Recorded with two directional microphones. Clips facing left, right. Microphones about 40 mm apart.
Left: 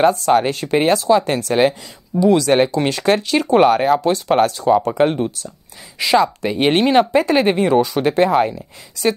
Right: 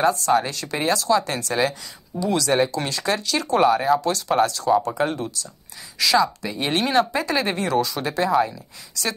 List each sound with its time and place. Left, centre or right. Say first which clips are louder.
0.0 s speech: left 5 dB; left
2.1 s speech: left 9 dB; left
2.4 s speech: left 6 dB; left
4.0 s speech: left 5 dB; left
6.8 s speech: left 5 dB; left
7.5 s speech: left 7 dB; left
7.9 s speech: left 6 dB; left